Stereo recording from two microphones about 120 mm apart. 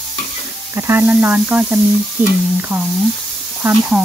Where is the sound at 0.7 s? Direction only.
20° right (ahead or behind).